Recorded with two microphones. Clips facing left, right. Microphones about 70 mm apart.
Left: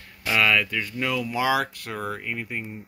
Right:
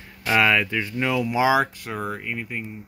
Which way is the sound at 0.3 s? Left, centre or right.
Centre.